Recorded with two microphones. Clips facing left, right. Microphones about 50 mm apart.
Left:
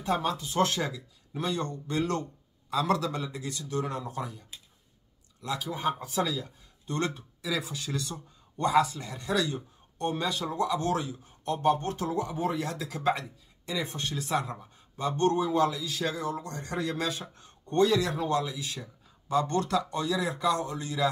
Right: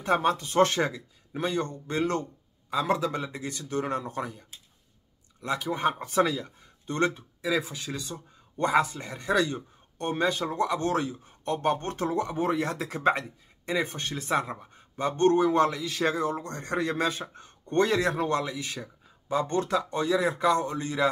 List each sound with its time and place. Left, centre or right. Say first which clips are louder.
0.0 s speech: right 4 dB; right
5.4 s speech: right 4 dB; right
19.2 s speech: even; right